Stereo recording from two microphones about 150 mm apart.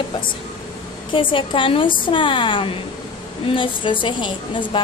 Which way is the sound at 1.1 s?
35° left (ahead or behind).